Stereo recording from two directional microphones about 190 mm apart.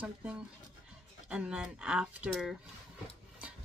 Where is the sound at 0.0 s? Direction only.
10° right (ahead or behind).